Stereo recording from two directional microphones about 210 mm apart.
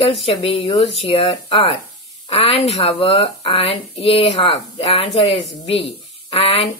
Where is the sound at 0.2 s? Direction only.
25° left (ahead or behind).